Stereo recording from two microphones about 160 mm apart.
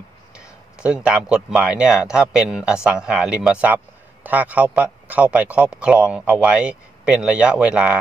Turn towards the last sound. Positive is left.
turn(degrees=-5)  # may be behind; listen again after turning